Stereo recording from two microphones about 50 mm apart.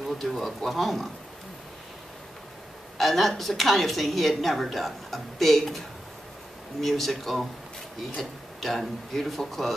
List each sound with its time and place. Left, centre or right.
0.3 s a woman's voice: centre
3.0 s a woman's voice: centre